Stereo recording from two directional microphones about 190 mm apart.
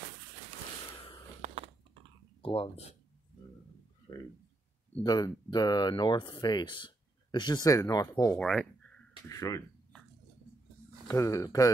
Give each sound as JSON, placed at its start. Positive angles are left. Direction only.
{"t": 1.4, "sound": "a sound", "side_deg": -30}
{"t": 2.4, "sound": "speech", "side_deg": 30}
{"t": 4.1, "sound": "speech", "side_deg": 20}
{"t": 8.4, "sound": "speech", "side_deg": 5}
{"t": 9.3, "sound": "speech", "side_deg": 15}
{"t": 11.1, "sound": "speech", "side_deg": 15}